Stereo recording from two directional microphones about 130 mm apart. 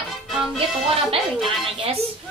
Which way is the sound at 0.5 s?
45° right (ahead or behind).